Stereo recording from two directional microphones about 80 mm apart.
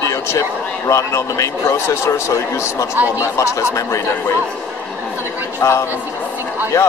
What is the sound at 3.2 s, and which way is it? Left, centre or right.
Speech, left.